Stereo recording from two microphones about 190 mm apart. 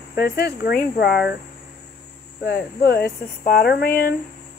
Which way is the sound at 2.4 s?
55° left (ahead or behind).